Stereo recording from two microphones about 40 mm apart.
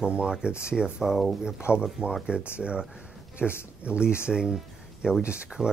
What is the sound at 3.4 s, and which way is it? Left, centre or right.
Speech, right.